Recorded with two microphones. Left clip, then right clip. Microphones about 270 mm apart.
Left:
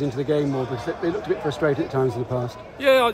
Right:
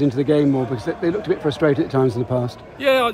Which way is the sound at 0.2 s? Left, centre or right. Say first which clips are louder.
Right 4 dB; right.